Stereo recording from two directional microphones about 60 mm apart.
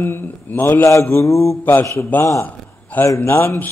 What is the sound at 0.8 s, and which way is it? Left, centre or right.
Mantra, left.